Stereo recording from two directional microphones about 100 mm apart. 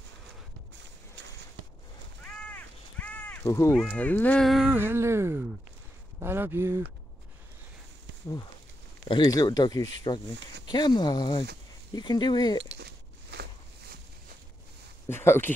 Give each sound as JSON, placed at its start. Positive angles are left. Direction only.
{"t": 2.2, "sound": "crow", "side_deg": 15}
{"t": 3.4, "sound": "speech", "side_deg": 30}
{"t": 3.7, "sound": "speech", "side_deg": 15}
{"t": 4.4, "sound": "a sound", "side_deg": 0}
{"t": 4.6, "sound": "a sound", "side_deg": -20}
{"t": 9.2, "sound": "speech", "side_deg": 40}
{"t": 10.1, "sound": "speech", "side_deg": 50}
{"t": 15.0, "sound": "speech", "side_deg": 25}